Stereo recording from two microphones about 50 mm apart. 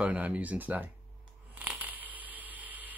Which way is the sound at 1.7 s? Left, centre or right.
Right.